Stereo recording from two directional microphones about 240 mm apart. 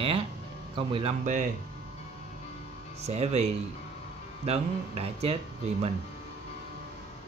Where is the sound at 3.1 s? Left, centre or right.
Right.